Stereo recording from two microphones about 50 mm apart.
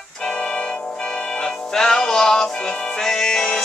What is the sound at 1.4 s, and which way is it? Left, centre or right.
Music, centre.